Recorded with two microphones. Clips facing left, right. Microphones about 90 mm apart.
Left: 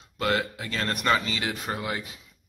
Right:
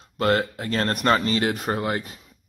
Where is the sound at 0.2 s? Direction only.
40° right (ahead or behind).